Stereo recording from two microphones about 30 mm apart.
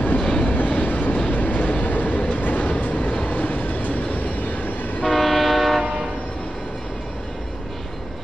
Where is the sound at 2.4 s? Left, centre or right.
Left.